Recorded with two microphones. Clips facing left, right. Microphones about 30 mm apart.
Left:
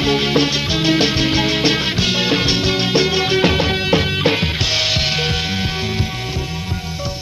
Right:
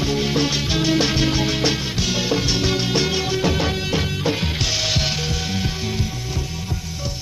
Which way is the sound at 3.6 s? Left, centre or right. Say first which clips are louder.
Left 6 dB; left.